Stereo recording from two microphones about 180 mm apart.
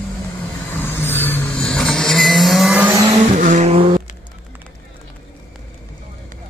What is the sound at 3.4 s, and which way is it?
Vehicle, 45° right (ahead or behind).